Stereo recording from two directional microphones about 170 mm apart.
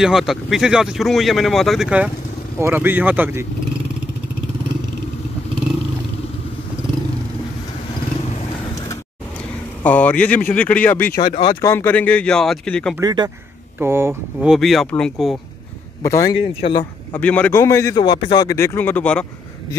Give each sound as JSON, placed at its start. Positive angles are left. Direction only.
{"t": 0.0, "sound": "speech", "side_deg": 0}
{"t": 9.8, "sound": "a man's voice", "side_deg": 10}
{"t": 11.1, "sound": "a man's voice", "side_deg": 30}
{"t": 11.6, "sound": "a man's voice", "side_deg": 15}
{"t": 13.0, "sound": "speech", "side_deg": -25}
{"t": 13.7, "sound": "speech", "side_deg": -15}
{"t": 14.5, "sound": "speech", "side_deg": 0}
{"t": 16.0, "sound": "a man's voice", "side_deg": 20}
{"t": 16.3, "sound": "speech", "side_deg": 35}
{"t": 17.1, "sound": "a man's voice", "side_deg": 10}